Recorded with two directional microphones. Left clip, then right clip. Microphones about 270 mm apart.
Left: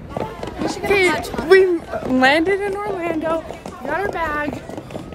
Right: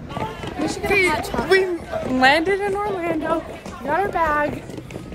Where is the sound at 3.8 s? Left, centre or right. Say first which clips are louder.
Right 2 dB; centre.